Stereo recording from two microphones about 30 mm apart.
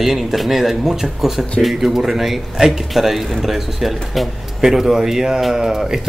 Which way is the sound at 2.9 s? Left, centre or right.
Centre.